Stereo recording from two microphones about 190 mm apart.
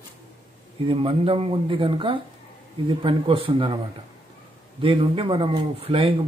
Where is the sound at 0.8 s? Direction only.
30° right (ahead or behind).